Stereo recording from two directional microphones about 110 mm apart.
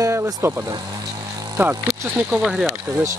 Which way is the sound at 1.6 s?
25° right (ahead or behind).